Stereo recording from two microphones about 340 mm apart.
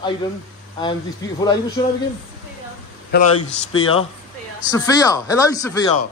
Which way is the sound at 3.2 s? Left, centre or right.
Left.